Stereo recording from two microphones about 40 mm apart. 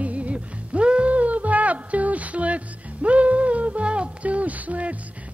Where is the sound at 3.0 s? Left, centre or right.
Right.